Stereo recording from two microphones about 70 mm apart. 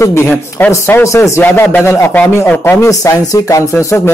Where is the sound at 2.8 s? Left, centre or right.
Left.